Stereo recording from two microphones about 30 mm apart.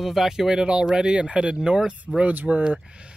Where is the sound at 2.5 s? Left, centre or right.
Centre.